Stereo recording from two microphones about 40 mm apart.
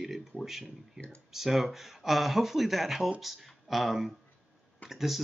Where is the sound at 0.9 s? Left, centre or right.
Left.